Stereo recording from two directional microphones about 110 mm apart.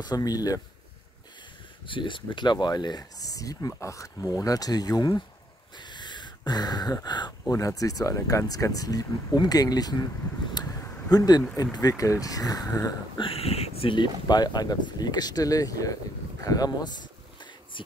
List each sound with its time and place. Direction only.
0.0 s speech: 35° left (ahead or behind)
1.9 s speech: 50° left (ahead or behind)
10.5 s a sound: 35° left (ahead or behind)
11.5 s speech: 35° left (ahead or behind)
13.2 s speech: 60° left (ahead or behind); by 16.9 s 35° left (ahead or behind)